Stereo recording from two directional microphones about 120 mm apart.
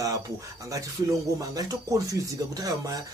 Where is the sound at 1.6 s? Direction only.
30° right (ahead or behind).